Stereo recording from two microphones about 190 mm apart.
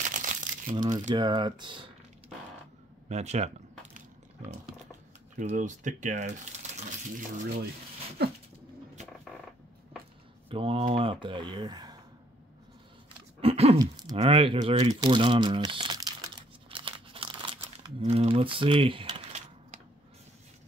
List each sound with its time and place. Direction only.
0.0 s crumpling: 40° right (ahead or behind)
0.7 s speech: 20° right (ahead or behind)
3.1 s speech: 35° right (ahead or behind)
5.4 s speech: 40° right (ahead or behind)
10.5 s speech: 30° right (ahead or behind)
13.4 s a sound: 30° right (ahead or behind)
13.7 s speech: 20° right (ahead or behind)
14.1 s crumpling: 30° right (ahead or behind)